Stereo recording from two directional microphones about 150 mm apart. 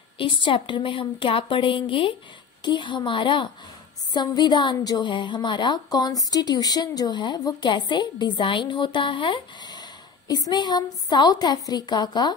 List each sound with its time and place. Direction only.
0.2 s a woman's voice: 35° left (ahead or behind)